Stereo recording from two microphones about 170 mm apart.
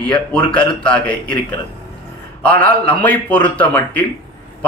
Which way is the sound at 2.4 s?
10° left (ahead or behind).